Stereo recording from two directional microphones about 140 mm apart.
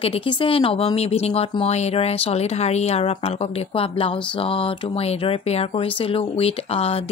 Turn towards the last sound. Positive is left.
turn(degrees=45)  # may be behind; listen again after turning